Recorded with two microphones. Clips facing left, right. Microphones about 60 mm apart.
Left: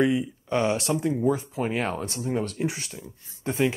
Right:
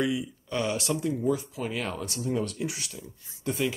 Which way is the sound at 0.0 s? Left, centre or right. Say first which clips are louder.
Left 5 dB; left.